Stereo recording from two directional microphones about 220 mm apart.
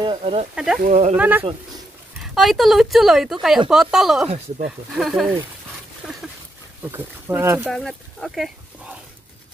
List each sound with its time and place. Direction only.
0.0 s speech: 25° right (ahead or behind)
1.1 s speech: 10° right (ahead or behind)
6.0 s a sound: 5° right (ahead or behind)
6.8 s speech: 10° right (ahead or behind)